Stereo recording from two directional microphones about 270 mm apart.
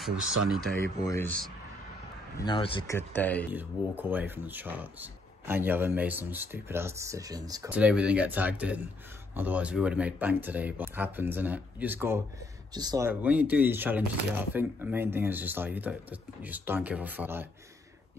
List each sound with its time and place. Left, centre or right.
0.0 s speech: centre
3.5 s speech: centre